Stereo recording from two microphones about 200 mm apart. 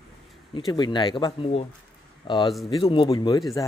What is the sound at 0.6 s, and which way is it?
A man's voice, 20° left (ahead or behind).